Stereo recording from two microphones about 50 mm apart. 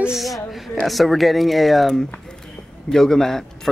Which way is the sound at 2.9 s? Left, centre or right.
Centre.